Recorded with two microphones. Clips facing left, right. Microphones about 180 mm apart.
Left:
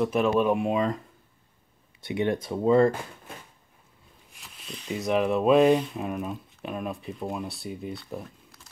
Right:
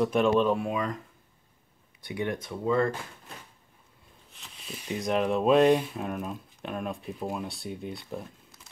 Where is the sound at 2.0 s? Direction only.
25° left (ahead or behind).